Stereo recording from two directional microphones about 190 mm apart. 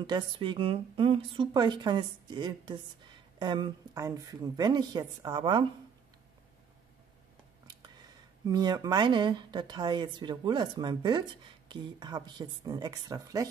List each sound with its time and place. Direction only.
0.0 s a woman's voice: 25° right (ahead or behind)
8.5 s a woman's voice: 20° right (ahead or behind)